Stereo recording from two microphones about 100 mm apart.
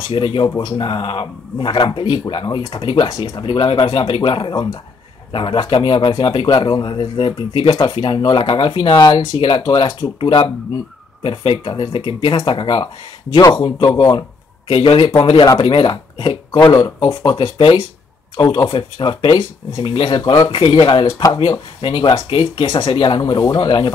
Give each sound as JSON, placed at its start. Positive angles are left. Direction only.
{"t": 0.1, "sound": "a man's voice", "side_deg": 60}
{"t": 2.1, "sound": "a man's voice", "side_deg": 50}
{"t": 8.9, "sound": "a man's voice", "side_deg": 45}
{"t": 14.7, "sound": "speech", "side_deg": 70}
{"t": 15.6, "sound": "a man's voice", "side_deg": 60}
{"t": 17.6, "sound": "speech", "side_deg": 70}
{"t": 18.3, "sound": "a man's voice", "side_deg": 45}